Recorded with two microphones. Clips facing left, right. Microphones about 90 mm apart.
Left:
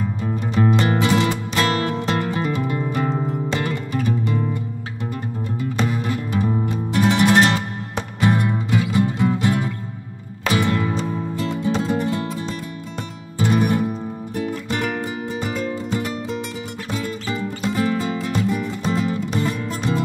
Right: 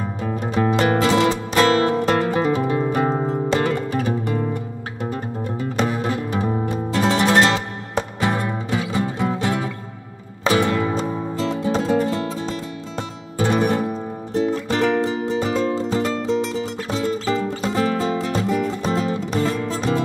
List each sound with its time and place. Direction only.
0.6 s music: 35° right (ahead or behind)
2.0 s music: 45° right (ahead or behind)
5.9 s music: 30° right (ahead or behind)